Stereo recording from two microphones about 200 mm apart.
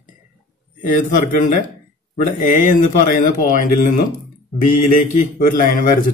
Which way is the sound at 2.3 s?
40° left (ahead or behind).